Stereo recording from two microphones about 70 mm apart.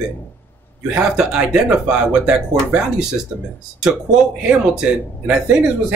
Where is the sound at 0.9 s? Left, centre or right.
Centre.